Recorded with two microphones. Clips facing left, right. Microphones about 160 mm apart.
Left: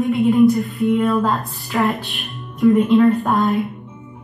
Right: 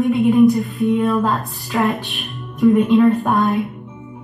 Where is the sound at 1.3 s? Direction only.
Centre (ahead or behind).